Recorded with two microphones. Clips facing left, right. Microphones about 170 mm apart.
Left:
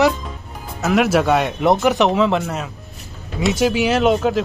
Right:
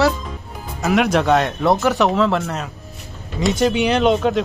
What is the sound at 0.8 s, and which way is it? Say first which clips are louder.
Speech: left 1 dB; centre (ahead or behind).